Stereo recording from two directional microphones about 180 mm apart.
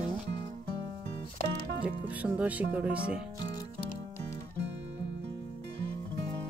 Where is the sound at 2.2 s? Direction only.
10° right (ahead or behind).